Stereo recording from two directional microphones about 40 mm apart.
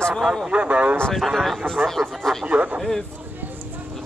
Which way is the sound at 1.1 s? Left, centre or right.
Centre.